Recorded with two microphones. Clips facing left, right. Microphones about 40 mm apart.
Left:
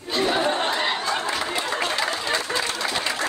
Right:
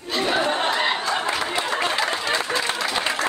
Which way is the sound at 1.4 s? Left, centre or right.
Right.